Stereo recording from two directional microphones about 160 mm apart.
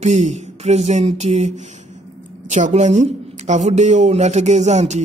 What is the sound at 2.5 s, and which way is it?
A woman's voice, 45° right (ahead or behind).